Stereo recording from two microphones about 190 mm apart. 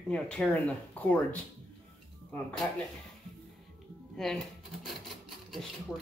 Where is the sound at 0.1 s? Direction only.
5° left (ahead or behind).